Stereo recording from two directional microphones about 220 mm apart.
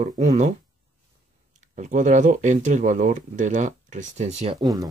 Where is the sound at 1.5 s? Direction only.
35° right (ahead or behind); by 4.9 s 15° right (ahead or behind).